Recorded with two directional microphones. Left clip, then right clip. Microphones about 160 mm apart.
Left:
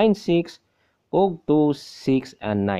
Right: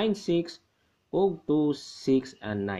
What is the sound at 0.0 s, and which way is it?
Speech, 25° left (ahead or behind).